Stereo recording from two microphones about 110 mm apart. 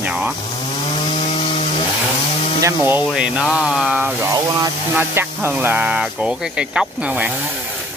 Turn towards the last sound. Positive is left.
turn(degrees=-15)  # may be behind; listen again after turning